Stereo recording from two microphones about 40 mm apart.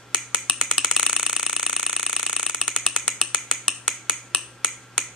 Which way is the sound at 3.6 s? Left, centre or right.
Centre.